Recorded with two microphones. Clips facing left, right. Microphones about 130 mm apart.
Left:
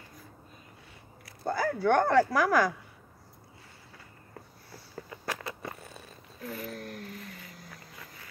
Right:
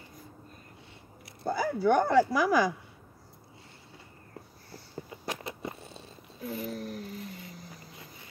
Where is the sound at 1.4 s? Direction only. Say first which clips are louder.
Right 1 dB; 10° right (ahead or behind).